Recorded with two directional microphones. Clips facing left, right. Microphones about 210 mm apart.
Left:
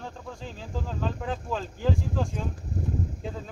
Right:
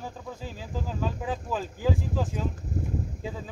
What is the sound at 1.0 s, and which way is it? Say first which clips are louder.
Speech: even; 5° right (ahead or behind).